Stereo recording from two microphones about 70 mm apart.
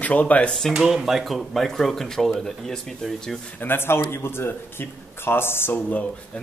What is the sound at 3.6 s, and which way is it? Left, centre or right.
Speech, left.